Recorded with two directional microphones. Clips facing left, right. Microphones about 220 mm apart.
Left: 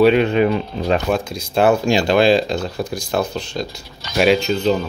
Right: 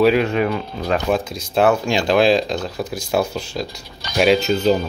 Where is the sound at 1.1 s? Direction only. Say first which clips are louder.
Even; centre (ahead or behind).